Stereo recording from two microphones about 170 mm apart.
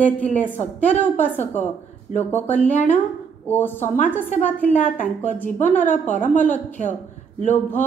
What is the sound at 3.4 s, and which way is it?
A woman's voice, 10° left (ahead or behind).